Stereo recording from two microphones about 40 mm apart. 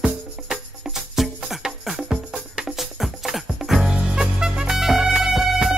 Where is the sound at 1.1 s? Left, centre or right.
Centre.